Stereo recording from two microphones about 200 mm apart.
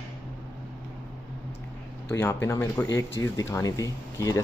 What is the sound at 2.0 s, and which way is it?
Speech, 15° left (ahead or behind).